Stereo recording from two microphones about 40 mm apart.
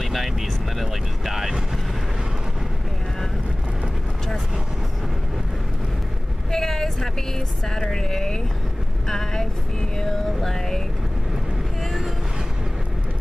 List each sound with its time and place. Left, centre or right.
0.0 s speech: centre
6.5 s speech: centre